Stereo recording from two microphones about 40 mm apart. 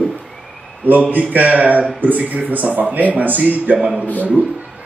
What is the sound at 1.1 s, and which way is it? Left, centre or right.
A man's voice, right.